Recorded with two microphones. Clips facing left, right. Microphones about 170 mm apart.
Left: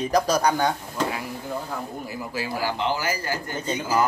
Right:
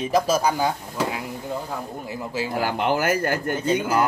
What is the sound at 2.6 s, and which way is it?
Speech, 55° right (ahead or behind).